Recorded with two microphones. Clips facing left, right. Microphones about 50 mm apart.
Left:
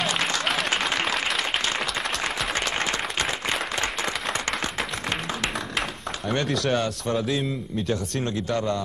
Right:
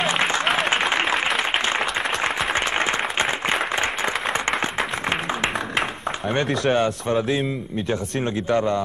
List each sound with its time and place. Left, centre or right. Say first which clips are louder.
0.0 s applause: right 4 dB; right
6.7 s speech: right 4 dB; right